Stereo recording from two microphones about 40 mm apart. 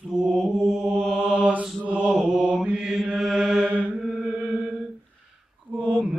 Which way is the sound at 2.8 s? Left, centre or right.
Centre.